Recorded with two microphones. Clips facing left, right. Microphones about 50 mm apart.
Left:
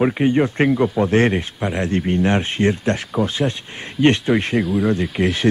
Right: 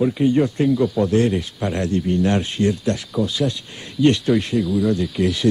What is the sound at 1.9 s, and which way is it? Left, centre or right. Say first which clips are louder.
Speech: left 1 dB; left.